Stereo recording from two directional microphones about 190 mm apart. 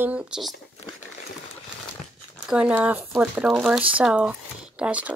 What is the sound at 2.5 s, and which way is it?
Speech, 5° right (ahead or behind).